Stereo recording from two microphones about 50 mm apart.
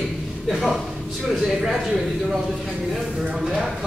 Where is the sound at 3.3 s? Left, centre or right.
Centre.